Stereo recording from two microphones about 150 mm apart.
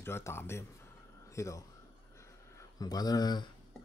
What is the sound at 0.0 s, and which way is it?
A man's voice, 15° left (ahead or behind).